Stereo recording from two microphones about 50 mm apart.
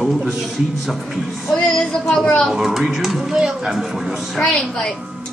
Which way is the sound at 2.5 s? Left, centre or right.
Centre.